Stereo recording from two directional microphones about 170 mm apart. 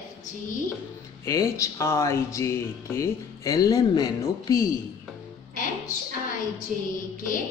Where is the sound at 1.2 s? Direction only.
20° left (ahead or behind).